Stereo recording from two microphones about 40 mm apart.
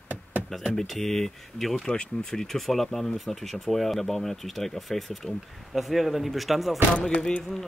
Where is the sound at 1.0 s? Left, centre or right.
Centre.